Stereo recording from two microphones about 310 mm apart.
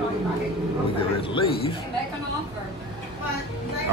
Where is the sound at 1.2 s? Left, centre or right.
Centre.